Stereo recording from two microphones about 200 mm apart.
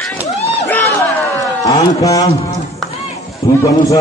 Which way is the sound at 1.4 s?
20° left (ahead or behind).